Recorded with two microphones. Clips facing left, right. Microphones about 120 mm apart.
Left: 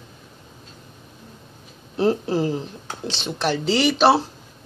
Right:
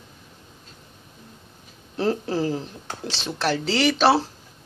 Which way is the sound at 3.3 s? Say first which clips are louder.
Left 2 dB; centre (ahead or behind).